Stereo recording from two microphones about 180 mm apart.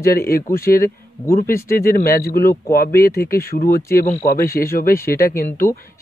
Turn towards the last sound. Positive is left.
turn(degrees=55)  # may be behind; listen again after turning